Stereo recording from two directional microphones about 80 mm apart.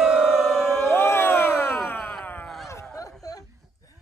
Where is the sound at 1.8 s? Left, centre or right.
Left.